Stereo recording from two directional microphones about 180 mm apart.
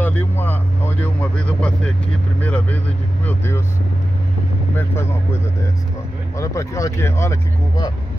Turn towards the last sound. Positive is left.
turn(degrees=20)  # may be behind; listen again after turning